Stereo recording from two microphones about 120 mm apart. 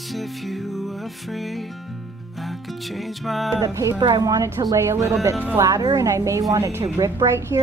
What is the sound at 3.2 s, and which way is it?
Music, centre (ahead or behind).